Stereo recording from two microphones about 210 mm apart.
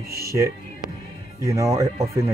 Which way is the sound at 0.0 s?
45° right (ahead or behind).